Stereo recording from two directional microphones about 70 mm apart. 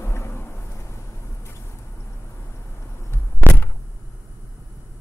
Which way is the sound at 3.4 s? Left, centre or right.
Right.